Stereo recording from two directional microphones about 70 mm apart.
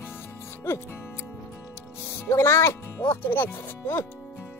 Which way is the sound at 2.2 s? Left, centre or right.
Left.